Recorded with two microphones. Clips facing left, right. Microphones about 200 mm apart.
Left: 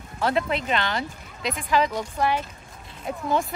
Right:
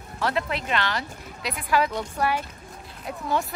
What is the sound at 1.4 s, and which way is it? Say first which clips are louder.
Speech: left 1 dB; 5° right (ahead or behind).